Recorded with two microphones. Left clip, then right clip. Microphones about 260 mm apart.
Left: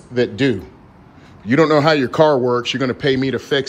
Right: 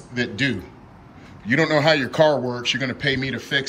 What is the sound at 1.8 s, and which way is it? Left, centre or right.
Speech, left.